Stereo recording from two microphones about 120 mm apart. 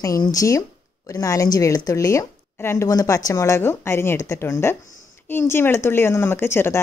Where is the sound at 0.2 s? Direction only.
30° left (ahead or behind).